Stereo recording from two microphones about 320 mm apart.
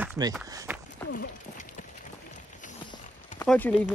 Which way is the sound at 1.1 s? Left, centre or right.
Left.